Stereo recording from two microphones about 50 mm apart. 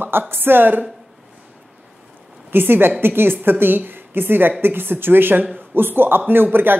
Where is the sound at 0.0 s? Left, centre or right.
Right.